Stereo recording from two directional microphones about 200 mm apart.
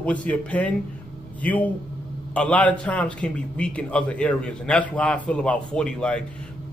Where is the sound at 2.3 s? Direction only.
5° left (ahead or behind).